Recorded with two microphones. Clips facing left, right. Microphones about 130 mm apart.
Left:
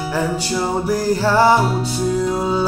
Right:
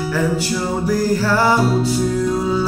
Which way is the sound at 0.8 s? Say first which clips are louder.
Right 2 dB; 20° left (ahead or behind).